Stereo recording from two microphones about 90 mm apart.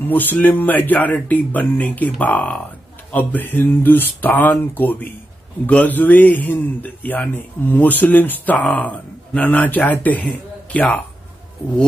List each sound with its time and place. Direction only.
0.0 s speech: 20° left (ahead or behind)